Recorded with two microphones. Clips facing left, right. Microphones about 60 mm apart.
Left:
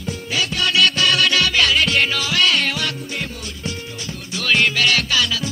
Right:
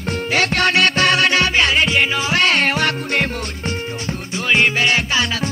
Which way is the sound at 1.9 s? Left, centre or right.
Centre.